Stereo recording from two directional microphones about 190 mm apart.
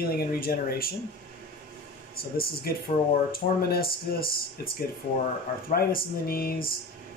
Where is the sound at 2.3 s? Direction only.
50° left (ahead or behind).